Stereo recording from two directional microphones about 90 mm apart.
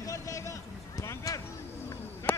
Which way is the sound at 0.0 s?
40° left (ahead or behind).